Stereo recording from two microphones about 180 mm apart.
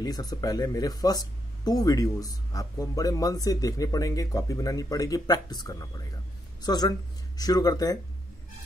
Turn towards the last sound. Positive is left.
turn(degrees=20)  # may be behind; listen again after turning